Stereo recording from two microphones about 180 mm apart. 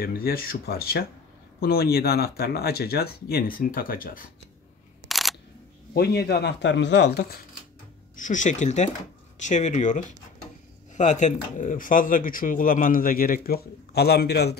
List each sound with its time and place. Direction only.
0.0 s speech: 55° left (ahead or behind)
5.0 s single-lens reflex camera: centre (ahead or behind)
5.9 s speech: 60° left (ahead or behind)
8.2 s speech: 45° left (ahead or behind)
11.0 s speech: 40° left (ahead or behind); by 14.6 s 65° left (ahead or behind)